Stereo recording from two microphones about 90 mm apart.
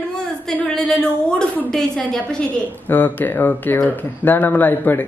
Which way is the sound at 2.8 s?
20° left (ahead or behind).